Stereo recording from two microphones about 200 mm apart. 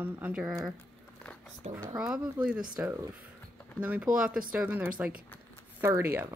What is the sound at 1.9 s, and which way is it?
Speech, 5° right (ahead or behind).